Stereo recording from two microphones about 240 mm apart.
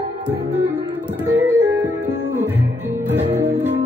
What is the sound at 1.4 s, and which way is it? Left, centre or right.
Music, centre.